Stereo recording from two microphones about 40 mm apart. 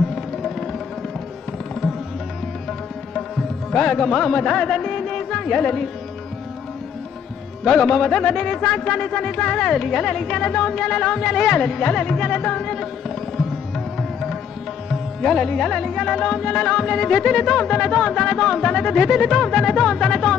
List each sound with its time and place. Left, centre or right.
0.1 s music: centre
4.1 s speech: left
7.6 s music: centre
10.7 s music: centre
15.2 s music: centre